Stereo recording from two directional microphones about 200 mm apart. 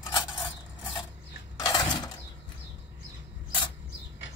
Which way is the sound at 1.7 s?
20° left (ahead or behind).